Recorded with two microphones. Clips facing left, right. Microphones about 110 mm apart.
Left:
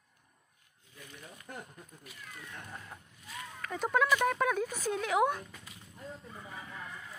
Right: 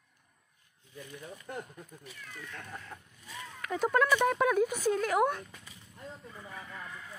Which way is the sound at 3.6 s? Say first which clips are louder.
Right 2 dB; 5° right (ahead or behind).